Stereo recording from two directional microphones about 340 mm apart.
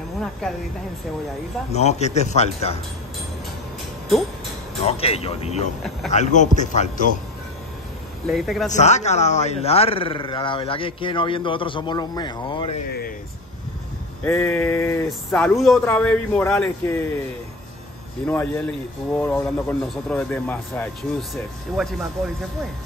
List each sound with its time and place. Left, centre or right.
1.7 s speech: centre
4.8 s speech: centre
8.3 s speech: centre
8.6 s speech: left
14.2 s speech: centre
18.2 s speech: centre